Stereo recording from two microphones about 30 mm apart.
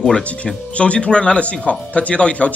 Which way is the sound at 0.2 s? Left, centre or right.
Left.